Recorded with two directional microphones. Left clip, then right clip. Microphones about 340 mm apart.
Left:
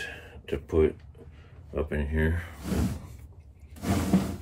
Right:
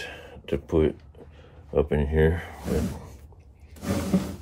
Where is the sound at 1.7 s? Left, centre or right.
Right.